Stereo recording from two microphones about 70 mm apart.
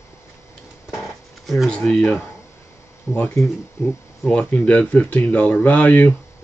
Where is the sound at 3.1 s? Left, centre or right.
Left.